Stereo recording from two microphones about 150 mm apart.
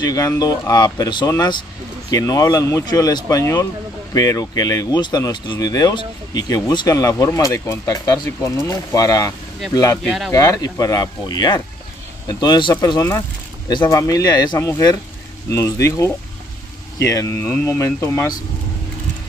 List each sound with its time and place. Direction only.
0.0 s speech: 25° left (ahead or behind)
10.0 s speech: centre (ahead or behind)
10.3 s speech: 20° left (ahead or behind)